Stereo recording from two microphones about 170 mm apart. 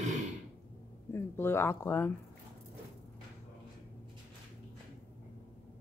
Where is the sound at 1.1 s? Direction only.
15° left (ahead or behind).